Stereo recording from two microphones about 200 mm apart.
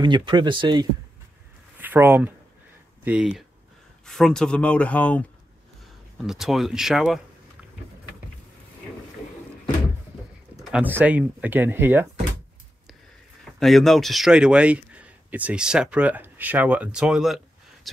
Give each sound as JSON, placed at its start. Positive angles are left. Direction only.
{"t": 0.0, "sound": "speech", "side_deg": -20}
{"t": 1.8, "sound": "speech", "side_deg": -10}
{"t": 6.2, "sound": "speech", "side_deg": 0}
{"t": 10.5, "sound": "speech", "side_deg": -5}
{"t": 13.6, "sound": "speech", "side_deg": 0}